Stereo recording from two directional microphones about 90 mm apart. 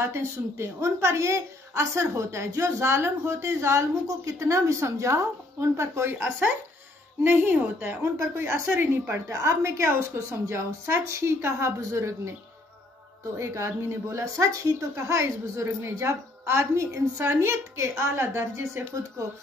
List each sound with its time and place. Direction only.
0.0 s a woman's voice: 30° right (ahead or behind)
7.2 s a woman's voice: 20° right (ahead or behind)
13.4 s a woman's voice: 30° right (ahead or behind)